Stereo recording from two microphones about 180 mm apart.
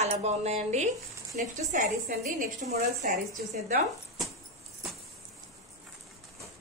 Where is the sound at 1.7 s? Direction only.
50° right (ahead or behind).